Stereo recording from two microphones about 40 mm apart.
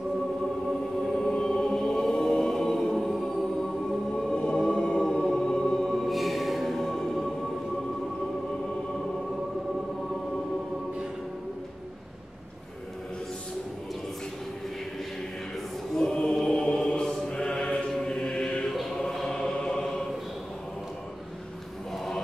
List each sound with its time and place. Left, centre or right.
1.0 s music: centre
1.3 s choir: centre
5.1 s music: centre
15.9 s choir: centre
16.3 s chant: centre
16.6 s mantra: left
17.3 s choir: left
18.0 s music: left
18.7 s choir: centre
21.9 s chant: centre